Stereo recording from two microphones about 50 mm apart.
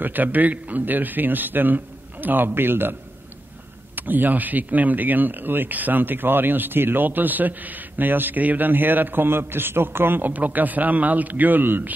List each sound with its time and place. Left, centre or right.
0.0 s a man's voice: right